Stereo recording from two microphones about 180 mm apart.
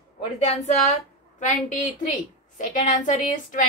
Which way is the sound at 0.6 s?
40° left (ahead or behind).